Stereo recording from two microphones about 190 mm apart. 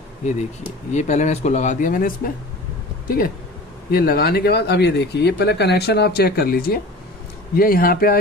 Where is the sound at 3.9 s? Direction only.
55° left (ahead or behind).